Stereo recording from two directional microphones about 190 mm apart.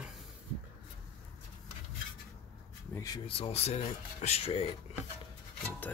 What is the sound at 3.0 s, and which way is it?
Speech, 20° left (ahead or behind).